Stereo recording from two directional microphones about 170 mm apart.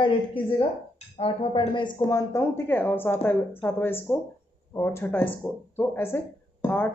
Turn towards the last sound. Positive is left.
turn(degrees=10)  # may be behind; listen again after turning